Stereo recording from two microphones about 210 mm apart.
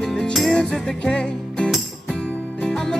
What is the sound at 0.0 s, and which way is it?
Music, centre (ahead or behind).